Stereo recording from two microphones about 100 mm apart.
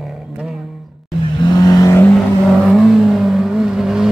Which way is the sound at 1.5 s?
40° left (ahead or behind).